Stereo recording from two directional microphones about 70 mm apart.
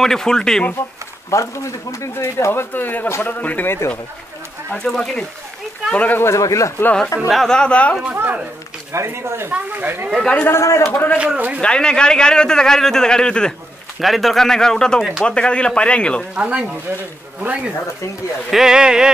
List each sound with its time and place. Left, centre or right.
0.0 s a man's voice: centre
1.3 s a man's voice: left
4.7 s a man's voice: centre
6.1 s speech: left
7.2 s a man's voice: centre
8.0 s speech: right
8.9 s speech: right
9.5 s speech: right
10.4 s speech: left
10.9 s a man's voice: left
11.1 s speech: right
11.6 s a man's voice: centre
13.9 s a man's voice: centre
16.3 s speech: centre